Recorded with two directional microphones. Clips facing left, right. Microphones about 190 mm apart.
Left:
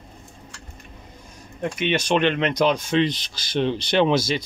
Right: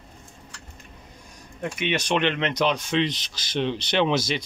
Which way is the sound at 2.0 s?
45° left (ahead or behind).